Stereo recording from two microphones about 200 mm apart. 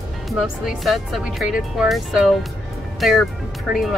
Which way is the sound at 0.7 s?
Centre (ahead or behind).